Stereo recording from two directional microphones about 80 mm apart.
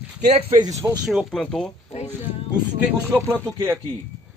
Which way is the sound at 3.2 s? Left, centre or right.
Right.